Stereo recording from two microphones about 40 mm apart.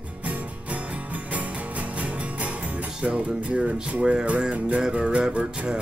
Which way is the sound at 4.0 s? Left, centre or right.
Right.